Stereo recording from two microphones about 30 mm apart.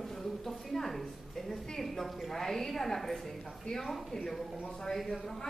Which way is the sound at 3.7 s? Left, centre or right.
Left.